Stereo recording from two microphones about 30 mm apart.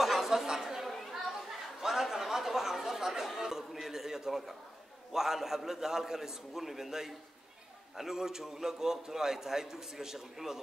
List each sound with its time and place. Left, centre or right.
0.0 s chatter: centre
3.3 s a sound: centre
5.1 s a man's voice: centre